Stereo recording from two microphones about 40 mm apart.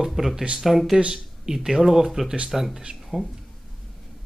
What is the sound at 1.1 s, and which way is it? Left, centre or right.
Speech, centre.